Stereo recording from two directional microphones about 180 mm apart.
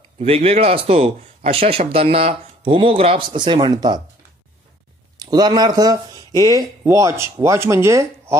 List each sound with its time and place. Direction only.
0.2 s speech: 35° right (ahead or behind)
5.2 s speech: 20° right (ahead or behind)